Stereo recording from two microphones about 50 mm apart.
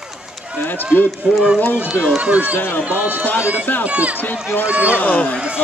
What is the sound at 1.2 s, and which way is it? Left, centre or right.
Speech, centre.